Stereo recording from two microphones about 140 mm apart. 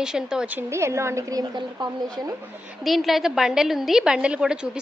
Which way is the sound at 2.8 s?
Centre (ahead or behind).